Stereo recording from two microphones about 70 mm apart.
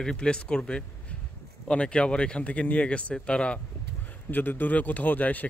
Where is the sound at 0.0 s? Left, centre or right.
Centre.